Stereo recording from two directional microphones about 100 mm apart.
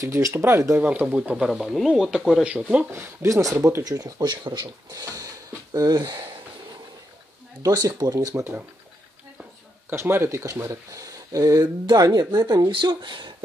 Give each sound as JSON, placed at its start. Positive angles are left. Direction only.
{"t": 0.0, "sound": "speech", "side_deg": -30}
{"t": 0.8, "sound": "speech", "side_deg": -10}
{"t": 2.9, "sound": "speech", "side_deg": -25}
{"t": 7.6, "sound": "speech", "side_deg": -35}
{"t": 9.9, "sound": "speech", "side_deg": -25}